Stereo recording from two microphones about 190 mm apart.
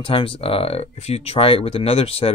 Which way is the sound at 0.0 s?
30° left (ahead or behind).